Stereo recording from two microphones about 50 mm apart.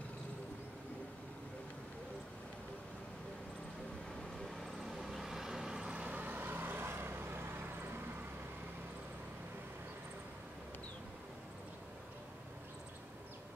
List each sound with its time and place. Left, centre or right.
4.6 s vehicle: centre
5.9 s vehicle: right